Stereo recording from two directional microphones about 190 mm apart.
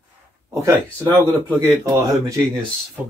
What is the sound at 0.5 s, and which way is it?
Speech, 15° right (ahead or behind).